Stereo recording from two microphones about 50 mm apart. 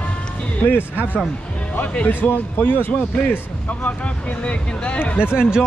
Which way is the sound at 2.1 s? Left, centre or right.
Left.